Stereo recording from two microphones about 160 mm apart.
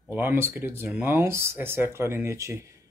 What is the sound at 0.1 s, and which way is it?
Speech, 15° right (ahead or behind).